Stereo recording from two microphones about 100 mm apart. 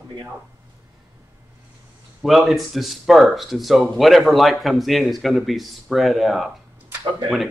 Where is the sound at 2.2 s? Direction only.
Centre (ahead or behind).